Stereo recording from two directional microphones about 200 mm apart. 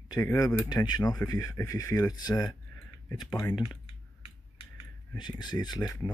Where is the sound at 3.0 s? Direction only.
15° left (ahead or behind).